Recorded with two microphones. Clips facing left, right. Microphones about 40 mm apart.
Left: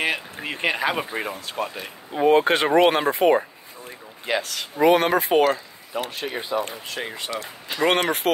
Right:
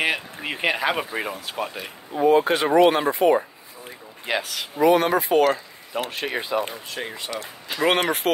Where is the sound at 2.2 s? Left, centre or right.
Left.